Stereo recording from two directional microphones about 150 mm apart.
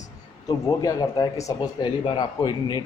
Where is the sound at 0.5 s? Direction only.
25° left (ahead or behind).